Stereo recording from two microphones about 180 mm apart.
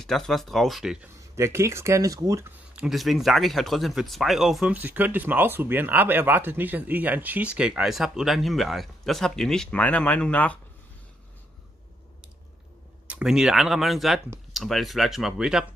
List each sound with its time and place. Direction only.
0.0 s speech: centre (ahead or behind)
1.0 s speech: 15° right (ahead or behind)
2.7 s speech: 5° right (ahead or behind)
13.0 s speech: 5° right (ahead or behind)